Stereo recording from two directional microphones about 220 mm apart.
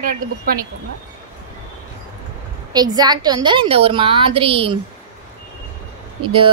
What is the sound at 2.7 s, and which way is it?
Speech, 20° right (ahead or behind).